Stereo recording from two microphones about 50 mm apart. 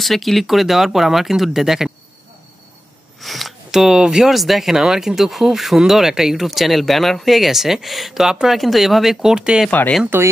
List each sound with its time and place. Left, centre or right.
0.0 s speech: centre
3.2 s a sound: centre
4.3 s speech: centre
9.3 s speech: centre
9.7 s speech: left